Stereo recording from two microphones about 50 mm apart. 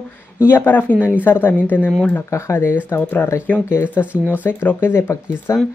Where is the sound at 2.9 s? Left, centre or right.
Left.